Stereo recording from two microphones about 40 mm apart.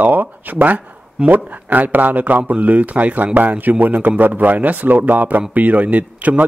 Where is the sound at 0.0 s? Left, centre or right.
Right.